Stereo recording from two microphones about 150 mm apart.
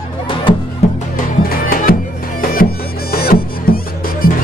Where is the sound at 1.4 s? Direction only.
75° left (ahead or behind).